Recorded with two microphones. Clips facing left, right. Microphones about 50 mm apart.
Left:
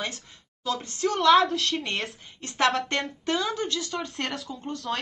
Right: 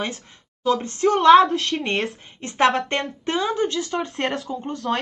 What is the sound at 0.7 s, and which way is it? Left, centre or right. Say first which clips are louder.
Speech: right 8 dB; right.